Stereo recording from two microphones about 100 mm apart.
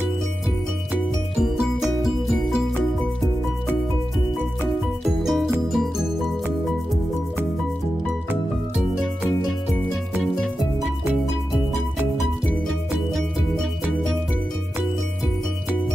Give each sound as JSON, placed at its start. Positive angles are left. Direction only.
{"t": 1.4, "sound": "music", "side_deg": -5}
{"t": 5.0, "sound": "music", "side_deg": 0}
{"t": 10.2, "sound": "music", "side_deg": 5}